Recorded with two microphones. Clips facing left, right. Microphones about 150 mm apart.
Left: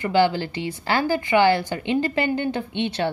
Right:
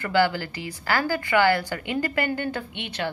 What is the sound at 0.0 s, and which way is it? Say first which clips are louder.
A woman's voice: left 3 dB; 20° left (ahead or behind).